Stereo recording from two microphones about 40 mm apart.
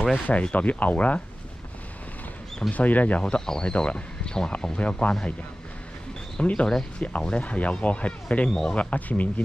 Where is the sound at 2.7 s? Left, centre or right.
Left.